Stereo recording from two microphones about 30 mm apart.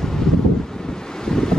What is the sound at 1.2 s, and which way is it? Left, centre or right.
Wind, centre.